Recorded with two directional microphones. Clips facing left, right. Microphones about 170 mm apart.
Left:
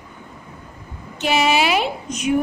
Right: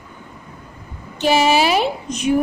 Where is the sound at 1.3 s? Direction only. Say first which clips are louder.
Right 3 dB; 35° right (ahead or behind).